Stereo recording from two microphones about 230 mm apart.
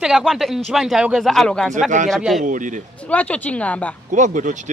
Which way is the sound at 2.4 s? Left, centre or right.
Right.